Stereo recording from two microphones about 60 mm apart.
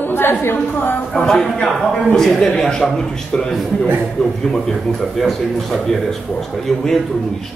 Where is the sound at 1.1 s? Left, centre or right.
Centre.